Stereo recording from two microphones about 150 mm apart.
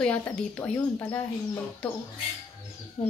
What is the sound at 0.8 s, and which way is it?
Speech, 25° left (ahead or behind).